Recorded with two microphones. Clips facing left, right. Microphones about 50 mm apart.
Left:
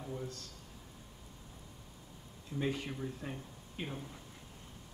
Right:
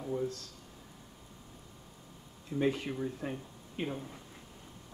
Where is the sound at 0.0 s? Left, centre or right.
Centre.